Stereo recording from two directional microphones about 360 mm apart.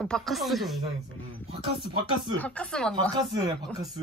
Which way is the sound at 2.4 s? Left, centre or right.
Centre.